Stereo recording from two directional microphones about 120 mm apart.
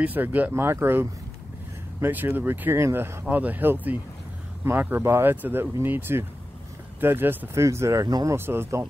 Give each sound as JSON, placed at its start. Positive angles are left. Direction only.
{"t": 0.0, "sound": "speech", "side_deg": -15}
{"t": 8.4, "sound": "speech", "side_deg": -20}